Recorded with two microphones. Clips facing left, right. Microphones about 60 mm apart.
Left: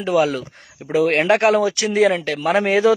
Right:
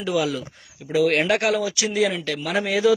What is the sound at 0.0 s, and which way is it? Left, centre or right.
A man's voice, left.